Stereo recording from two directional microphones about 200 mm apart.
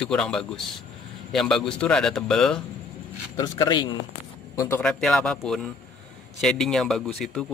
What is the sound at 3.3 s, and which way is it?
A man's voice, 20° left (ahead or behind).